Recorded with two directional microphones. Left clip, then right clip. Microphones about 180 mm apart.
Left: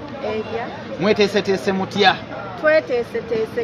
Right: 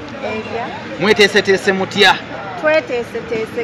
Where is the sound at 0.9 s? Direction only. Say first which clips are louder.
Right 6 dB; 65° left (ahead or behind).